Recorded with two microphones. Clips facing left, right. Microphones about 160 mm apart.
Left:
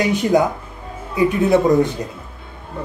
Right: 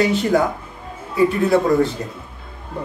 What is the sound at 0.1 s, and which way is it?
Speech, 15° left (ahead or behind).